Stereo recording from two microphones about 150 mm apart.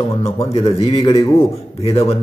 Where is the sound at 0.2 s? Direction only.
40° left (ahead or behind).